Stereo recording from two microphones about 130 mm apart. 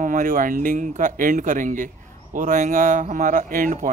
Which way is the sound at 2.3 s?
70° right (ahead or behind).